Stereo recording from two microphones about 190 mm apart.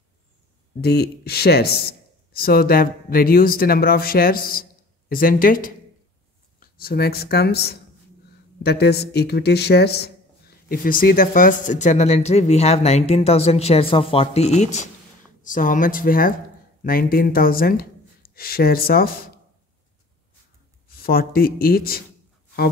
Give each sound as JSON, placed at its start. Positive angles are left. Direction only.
{"t": 0.7, "sound": "speech", "side_deg": 60}
{"t": 6.8, "sound": "speech", "side_deg": 55}
{"t": 10.7, "sound": "speech", "side_deg": 50}
{"t": 21.0, "sound": "speech", "side_deg": 50}